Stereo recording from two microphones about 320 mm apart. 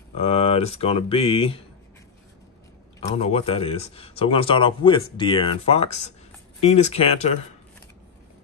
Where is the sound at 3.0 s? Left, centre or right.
Centre.